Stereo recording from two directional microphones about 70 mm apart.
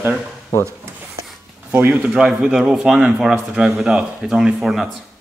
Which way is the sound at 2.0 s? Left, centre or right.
Centre.